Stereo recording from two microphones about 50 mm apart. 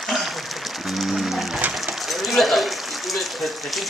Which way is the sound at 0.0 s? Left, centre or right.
Centre.